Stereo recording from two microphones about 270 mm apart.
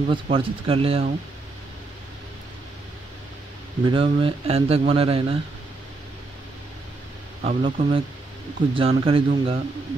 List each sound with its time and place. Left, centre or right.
0.1 s speech: centre
3.8 s speech: centre
7.4 s speech: centre